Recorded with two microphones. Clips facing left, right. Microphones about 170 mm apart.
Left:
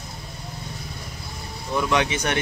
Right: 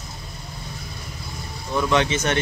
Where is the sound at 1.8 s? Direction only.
15° left (ahead or behind).